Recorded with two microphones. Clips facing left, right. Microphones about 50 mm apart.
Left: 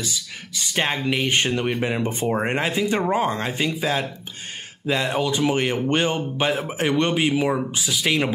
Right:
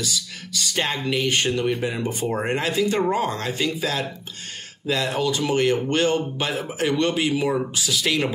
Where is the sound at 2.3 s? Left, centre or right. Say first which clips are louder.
Left 1 dB; left.